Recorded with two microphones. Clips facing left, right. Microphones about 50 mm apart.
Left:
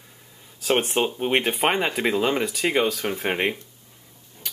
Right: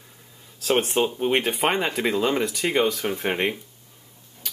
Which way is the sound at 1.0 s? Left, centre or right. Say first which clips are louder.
Right 1 dB; centre.